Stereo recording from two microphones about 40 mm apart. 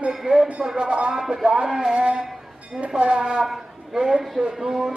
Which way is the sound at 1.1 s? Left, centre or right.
Centre.